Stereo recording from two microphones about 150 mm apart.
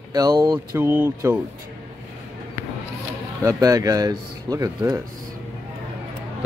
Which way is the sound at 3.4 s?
20° right (ahead or behind).